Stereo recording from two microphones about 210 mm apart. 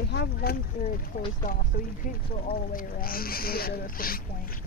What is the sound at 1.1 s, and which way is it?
Speech, 40° left (ahead or behind).